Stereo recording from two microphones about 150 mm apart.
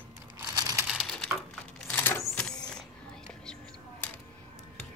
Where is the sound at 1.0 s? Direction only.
5° left (ahead or behind).